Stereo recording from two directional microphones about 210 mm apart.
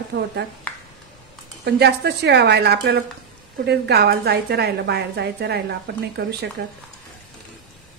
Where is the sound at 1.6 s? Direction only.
50° right (ahead or behind).